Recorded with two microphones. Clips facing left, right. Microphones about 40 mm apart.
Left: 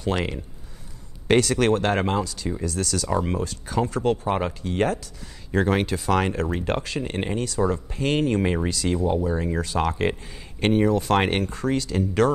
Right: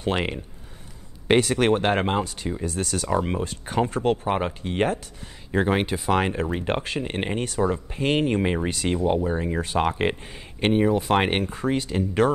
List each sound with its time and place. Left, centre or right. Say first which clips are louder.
0.0 s speech: even; right
1.2 s speech: even; centre
3.4 s speech: right 1 dB; right
5.5 s speech: even; centre; by 7.6 s right
7.6 s speech: right 1 dB; right
8.6 s speech: even; right
10.6 s speech: even; centre